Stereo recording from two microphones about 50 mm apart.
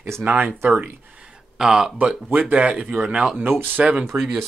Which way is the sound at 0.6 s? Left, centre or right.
Right.